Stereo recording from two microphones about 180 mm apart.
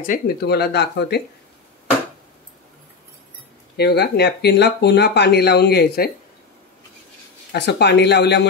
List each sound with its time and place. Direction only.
0.0 s speech: 55° left (ahead or behind)
3.7 s speech: 65° left (ahead or behind)
7.5 s speech: 70° left (ahead or behind)